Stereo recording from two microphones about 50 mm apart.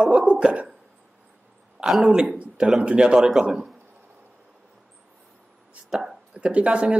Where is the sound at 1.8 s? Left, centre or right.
Centre.